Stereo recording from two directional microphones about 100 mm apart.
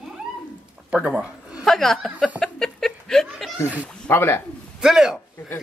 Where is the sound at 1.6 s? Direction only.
5° left (ahead or behind).